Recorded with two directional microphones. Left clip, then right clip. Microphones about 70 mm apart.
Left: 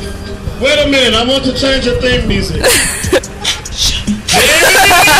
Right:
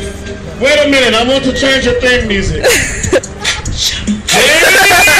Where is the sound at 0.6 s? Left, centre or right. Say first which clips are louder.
Right 1 dB; left.